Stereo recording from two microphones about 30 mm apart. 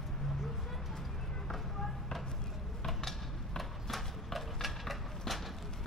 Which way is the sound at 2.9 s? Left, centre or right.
Centre.